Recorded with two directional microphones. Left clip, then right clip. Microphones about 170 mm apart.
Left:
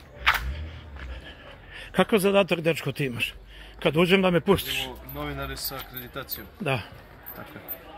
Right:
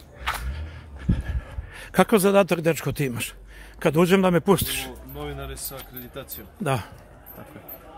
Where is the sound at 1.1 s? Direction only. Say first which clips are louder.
Right 8 dB; 30° right (ahead or behind).